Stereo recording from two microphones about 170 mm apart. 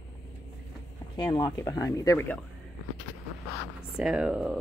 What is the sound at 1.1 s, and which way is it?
Speech, 20° left (ahead or behind).